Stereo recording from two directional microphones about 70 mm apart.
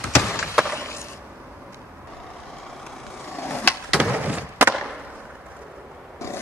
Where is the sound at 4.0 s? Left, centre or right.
Right.